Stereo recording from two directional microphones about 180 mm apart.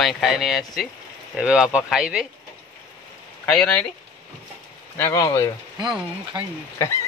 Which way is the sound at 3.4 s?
5° left (ahead or behind).